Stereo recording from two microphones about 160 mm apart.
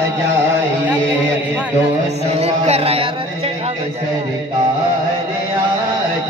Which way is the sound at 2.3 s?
40° right (ahead or behind).